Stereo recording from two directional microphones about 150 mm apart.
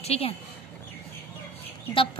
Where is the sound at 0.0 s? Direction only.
40° left (ahead or behind).